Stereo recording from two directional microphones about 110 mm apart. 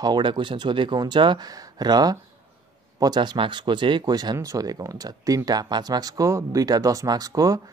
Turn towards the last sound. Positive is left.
turn(degrees=-30)  # may be behind; listen again after turning